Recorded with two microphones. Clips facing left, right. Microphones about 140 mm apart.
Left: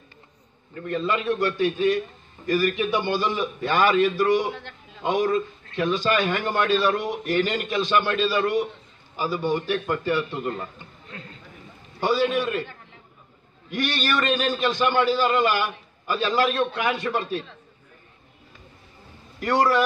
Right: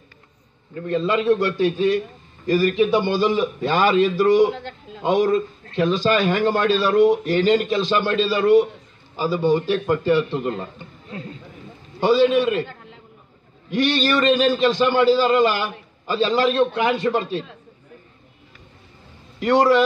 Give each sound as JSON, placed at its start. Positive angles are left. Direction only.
{"t": 0.8, "sound": "a man's voice", "side_deg": -30}
{"t": 13.7, "sound": "a man's voice", "side_deg": -30}
{"t": 19.4, "sound": "a man's voice", "side_deg": -25}